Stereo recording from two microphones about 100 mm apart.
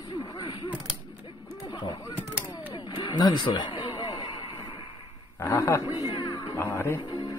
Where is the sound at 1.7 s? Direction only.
40° left (ahead or behind).